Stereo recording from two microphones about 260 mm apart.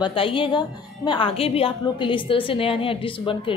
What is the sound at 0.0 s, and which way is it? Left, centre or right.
A woman's voice, centre.